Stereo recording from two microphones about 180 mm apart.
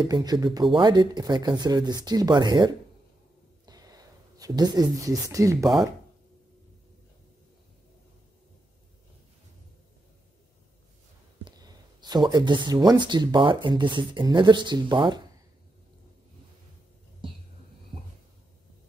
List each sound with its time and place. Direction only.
0.0 s speech: 20° right (ahead or behind)
3.6 s a sound: 20° right (ahead or behind)
11.4 s speech: 25° right (ahead or behind)
17.2 s whispering: 30° right (ahead or behind)